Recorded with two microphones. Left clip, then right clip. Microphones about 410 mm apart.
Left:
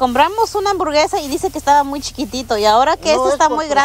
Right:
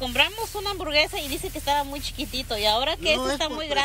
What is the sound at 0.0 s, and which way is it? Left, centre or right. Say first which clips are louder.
Speech: left 10 dB; left.